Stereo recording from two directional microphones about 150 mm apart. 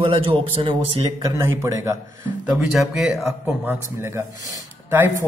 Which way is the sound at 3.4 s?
15° right (ahead or behind).